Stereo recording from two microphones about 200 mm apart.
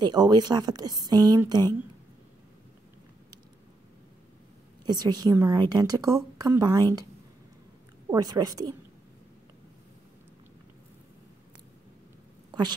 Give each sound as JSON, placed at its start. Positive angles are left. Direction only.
{"t": 0.0, "sound": "a woman's voice", "side_deg": -20}
{"t": 4.8, "sound": "a woman's voice", "side_deg": -20}
{"t": 8.1, "sound": "a woman's voice", "side_deg": -20}
{"t": 12.4, "sound": "a sound", "side_deg": -20}